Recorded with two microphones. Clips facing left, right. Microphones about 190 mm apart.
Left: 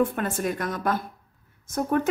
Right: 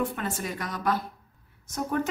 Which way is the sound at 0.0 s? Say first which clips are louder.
Left 6 dB; 55° left (ahead or behind).